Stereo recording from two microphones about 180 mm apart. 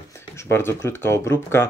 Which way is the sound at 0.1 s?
15° left (ahead or behind).